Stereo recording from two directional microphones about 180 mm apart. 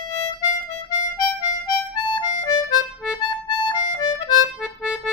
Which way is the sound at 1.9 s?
25° left (ahead or behind).